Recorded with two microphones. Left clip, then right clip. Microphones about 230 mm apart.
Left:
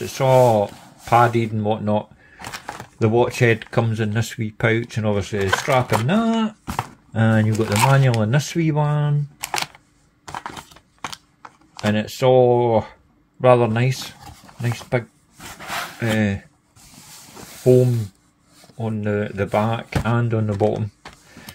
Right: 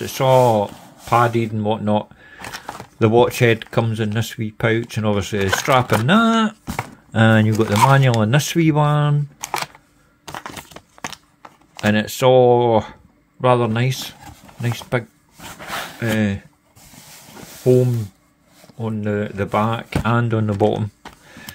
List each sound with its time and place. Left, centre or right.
0.0 s speech: centre
10.2 s crushing: right
10.8 s a sound: right
11.1 s a sound: right
13.4 s speech: centre
17.6 s speech: centre